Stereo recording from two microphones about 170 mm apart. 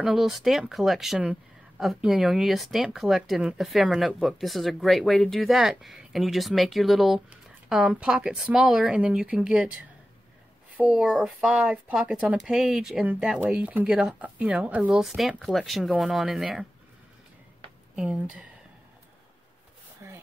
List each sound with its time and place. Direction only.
0.0 s speech: centre (ahead or behind)
17.9 s speech: 5° right (ahead or behind)
20.0 s a sound: 15° right (ahead or behind)